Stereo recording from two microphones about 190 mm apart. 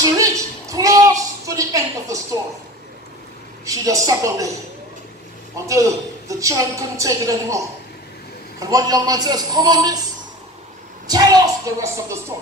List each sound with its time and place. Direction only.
0.0 s a sound: 15° right (ahead or behind)
3.6 s a woman's voice: 15° right (ahead or behind)
5.7 s a woman's voice: 15° right (ahead or behind)
11.1 s a woman's voice: 20° right (ahead or behind)